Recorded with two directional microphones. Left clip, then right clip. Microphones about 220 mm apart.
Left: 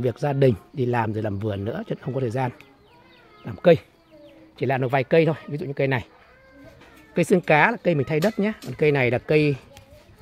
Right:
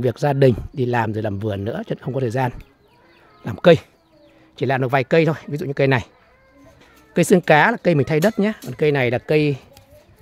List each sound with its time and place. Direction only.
0.0 s speech: 15° right (ahead or behind)
3.4 s speech: 25° right (ahead or behind)
7.2 s speech: 20° right (ahead or behind)